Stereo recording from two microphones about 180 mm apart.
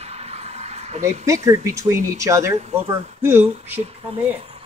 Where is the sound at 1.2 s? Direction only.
15° right (ahead or behind).